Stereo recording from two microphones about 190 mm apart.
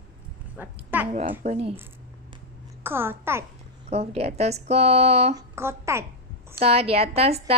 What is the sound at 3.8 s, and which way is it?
Speech, 35° right (ahead or behind).